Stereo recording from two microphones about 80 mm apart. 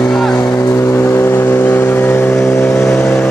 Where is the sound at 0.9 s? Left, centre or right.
Left.